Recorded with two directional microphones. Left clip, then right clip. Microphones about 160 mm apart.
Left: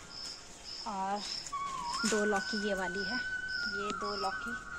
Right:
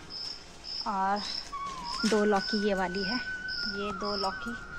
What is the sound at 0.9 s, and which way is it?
Speech, 15° right (ahead or behind).